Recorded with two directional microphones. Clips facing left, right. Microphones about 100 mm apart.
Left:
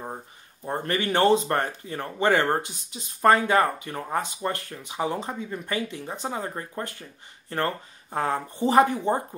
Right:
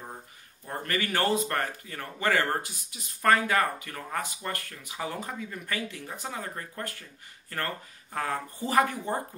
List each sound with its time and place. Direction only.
0.7 s speech: 25° left (ahead or behind)